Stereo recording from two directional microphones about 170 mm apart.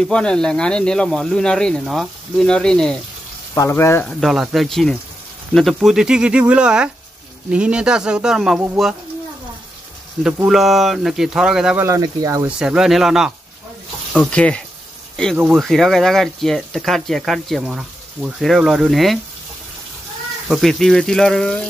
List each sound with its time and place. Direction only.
0.0 s speech: 5° left (ahead or behind)
3.5 s speech: 15° left (ahead or behind)
4.2 s speech: centre (ahead or behind)
10.2 s speech: 5° right (ahead or behind)
11.8 s speech: 20° right (ahead or behind)
12.4 s speech: 5° right (ahead or behind)
15.3 s speech: 5° right (ahead or behind)
20.4 s speech: centre (ahead or behind)